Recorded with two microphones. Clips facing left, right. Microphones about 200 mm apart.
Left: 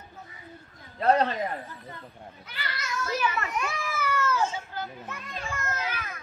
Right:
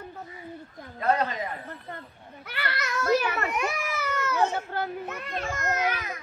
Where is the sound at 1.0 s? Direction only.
30° left (ahead or behind).